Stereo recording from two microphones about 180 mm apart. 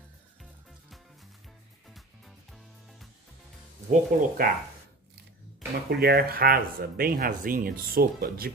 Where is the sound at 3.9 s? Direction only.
55° right (ahead or behind).